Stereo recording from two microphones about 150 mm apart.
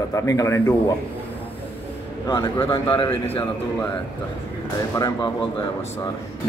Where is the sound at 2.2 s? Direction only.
25° left (ahead or behind).